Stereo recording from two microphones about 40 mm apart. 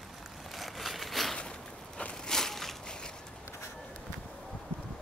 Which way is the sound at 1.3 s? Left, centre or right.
Left.